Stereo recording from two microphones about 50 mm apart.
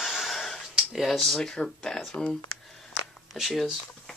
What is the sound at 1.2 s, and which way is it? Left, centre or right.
Speech, centre.